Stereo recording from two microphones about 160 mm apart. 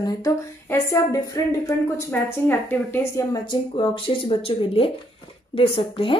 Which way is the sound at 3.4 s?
30° left (ahead or behind).